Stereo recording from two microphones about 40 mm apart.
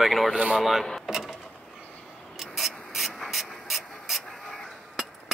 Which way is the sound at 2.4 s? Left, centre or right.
Centre.